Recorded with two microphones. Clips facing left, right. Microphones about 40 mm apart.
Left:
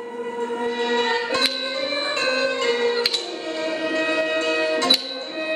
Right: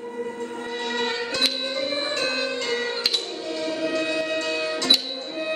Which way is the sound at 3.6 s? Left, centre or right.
Left.